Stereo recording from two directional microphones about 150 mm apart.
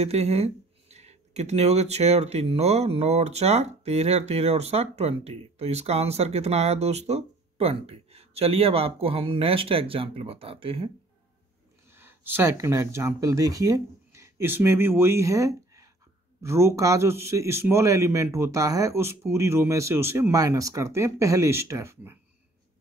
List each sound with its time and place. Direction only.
0.0 s speech: 45° right (ahead or behind)
11.9 s a man's voice: 15° right (ahead or behind)